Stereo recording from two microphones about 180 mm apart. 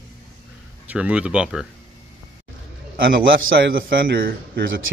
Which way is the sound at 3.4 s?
60° right (ahead or behind).